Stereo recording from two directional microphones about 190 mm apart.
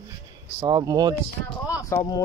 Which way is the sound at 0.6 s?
20° right (ahead or behind).